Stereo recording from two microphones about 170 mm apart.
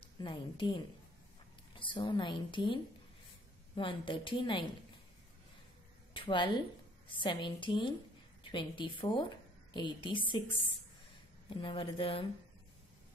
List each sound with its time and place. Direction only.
0.2 s a woman's voice: 30° left (ahead or behind)
1.8 s a woman's voice: 25° left (ahead or behind)
6.1 s a woman's voice: 30° left (ahead or behind)
11.6 s a woman's voice: 30° left (ahead or behind)